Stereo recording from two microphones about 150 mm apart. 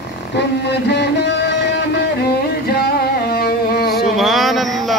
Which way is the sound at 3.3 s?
90° left.